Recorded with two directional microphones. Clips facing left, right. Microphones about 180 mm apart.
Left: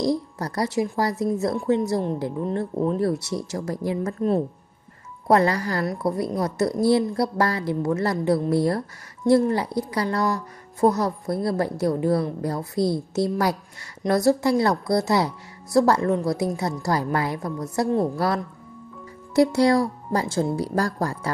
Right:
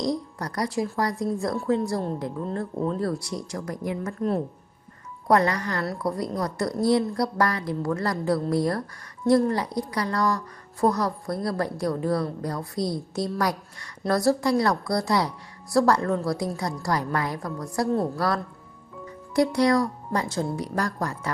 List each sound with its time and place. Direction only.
0.0 s a woman's voice: 30° left (ahead or behind)
3.0 s a woman's voice: 25° left (ahead or behind)
5.3 s a woman's voice: 30° left (ahead or behind)